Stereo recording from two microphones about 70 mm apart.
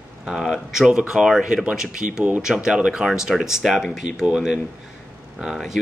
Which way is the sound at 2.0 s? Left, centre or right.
Right.